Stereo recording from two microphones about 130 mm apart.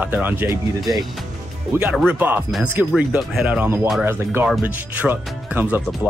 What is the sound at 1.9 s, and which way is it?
Speech, 10° right (ahead or behind).